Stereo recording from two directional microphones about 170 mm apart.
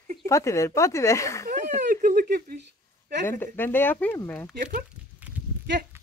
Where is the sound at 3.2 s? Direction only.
15° left (ahead or behind).